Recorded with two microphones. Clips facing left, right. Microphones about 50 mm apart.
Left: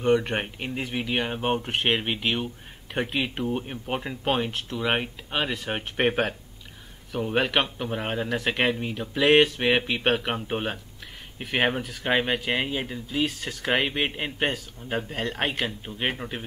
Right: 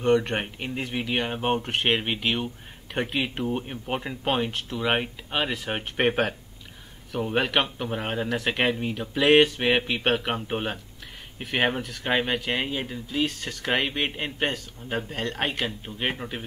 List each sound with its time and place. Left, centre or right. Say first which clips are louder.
0.0 s speech: even; centre